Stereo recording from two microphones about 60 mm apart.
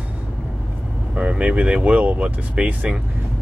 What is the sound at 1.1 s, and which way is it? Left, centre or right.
Speech, right.